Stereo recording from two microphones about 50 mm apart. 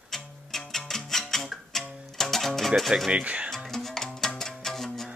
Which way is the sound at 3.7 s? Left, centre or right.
Centre.